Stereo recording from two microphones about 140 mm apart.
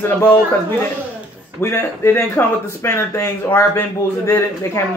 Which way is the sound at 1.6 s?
15° left (ahead or behind).